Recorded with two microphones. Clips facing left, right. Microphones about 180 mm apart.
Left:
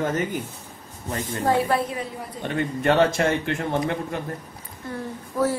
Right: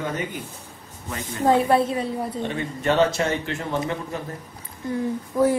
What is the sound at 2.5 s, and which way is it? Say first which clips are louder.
A man's voice: left 2 dB; 55° left (ahead or behind).